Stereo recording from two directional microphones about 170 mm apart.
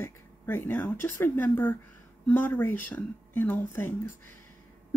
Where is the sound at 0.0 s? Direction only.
10° left (ahead or behind).